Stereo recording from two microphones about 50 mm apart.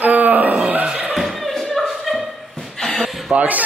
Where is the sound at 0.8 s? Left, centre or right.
Right.